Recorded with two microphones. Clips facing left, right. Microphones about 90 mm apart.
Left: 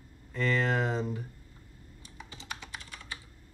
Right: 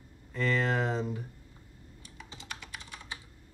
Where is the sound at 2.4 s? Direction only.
25° left (ahead or behind).